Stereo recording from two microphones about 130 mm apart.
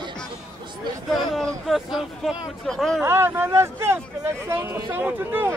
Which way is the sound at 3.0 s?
20° right (ahead or behind).